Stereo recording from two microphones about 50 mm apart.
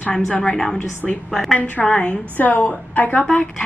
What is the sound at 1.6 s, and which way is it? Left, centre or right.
A woman's voice, left.